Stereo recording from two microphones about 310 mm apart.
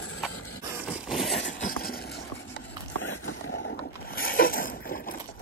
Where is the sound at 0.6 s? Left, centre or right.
Centre.